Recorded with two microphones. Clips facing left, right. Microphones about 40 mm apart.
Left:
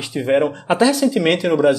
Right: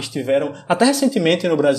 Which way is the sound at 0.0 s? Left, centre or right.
Centre.